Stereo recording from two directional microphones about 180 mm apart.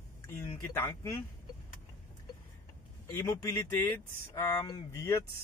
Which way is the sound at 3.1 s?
15° left (ahead or behind).